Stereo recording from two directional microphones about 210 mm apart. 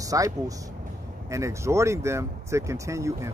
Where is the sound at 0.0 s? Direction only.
15° right (ahead or behind).